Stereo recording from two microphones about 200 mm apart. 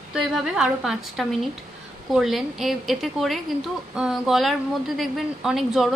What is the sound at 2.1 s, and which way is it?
A woman's voice, centre (ahead or behind).